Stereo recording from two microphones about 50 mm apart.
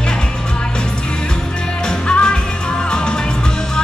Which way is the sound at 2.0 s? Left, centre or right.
Left.